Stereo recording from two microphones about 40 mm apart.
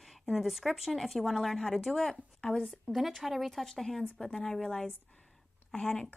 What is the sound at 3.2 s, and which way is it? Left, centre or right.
A woman's voice, centre.